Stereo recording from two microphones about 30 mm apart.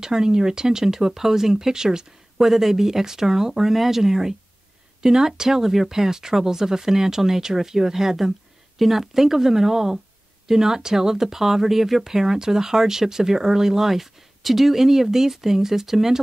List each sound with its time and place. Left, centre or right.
0.0 s speech: right
8.7 s speech: centre